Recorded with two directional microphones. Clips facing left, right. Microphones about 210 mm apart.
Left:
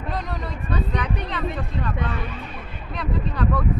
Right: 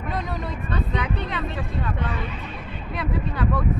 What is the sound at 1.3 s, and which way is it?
Speech, centre (ahead or behind).